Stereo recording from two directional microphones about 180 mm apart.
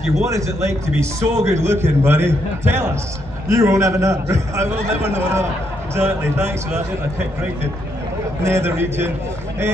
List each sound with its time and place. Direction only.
0.3 s a man's voice: 15° right (ahead or behind)
8.4 s a man's voice: 15° right (ahead or behind)